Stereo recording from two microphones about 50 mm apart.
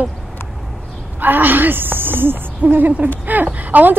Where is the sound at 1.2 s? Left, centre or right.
Right.